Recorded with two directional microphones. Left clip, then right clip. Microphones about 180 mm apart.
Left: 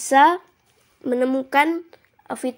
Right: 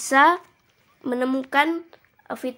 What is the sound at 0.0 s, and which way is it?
Speech, 5° left (ahead or behind).